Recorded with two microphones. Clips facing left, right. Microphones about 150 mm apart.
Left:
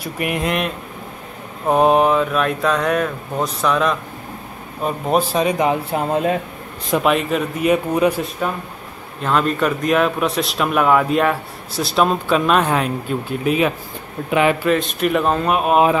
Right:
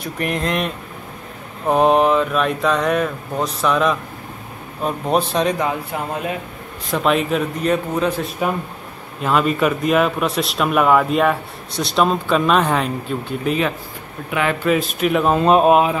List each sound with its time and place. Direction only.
0.0 s a man's voice: 5° left (ahead or behind)
5.6 s speech: 20° left (ahead or behind)
7.1 s a man's voice: centre (ahead or behind)
8.4 s a man's voice: 10° right (ahead or behind); by 13.7 s 5° left (ahead or behind)
14.3 s speech: 15° left (ahead or behind)
14.7 s a man's voice: centre (ahead or behind)
15.4 s speech: 30° right (ahead or behind)